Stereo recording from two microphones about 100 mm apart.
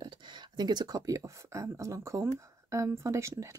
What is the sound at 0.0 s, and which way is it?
Speech, 50° right (ahead or behind).